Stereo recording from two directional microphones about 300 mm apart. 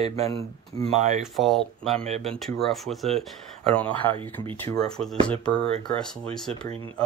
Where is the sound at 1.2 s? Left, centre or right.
Centre.